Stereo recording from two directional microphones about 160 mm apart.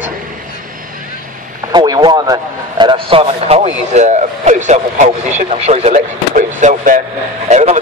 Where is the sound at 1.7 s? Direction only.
25° right (ahead or behind).